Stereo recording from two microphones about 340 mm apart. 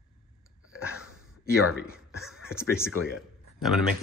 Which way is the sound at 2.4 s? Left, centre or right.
Centre.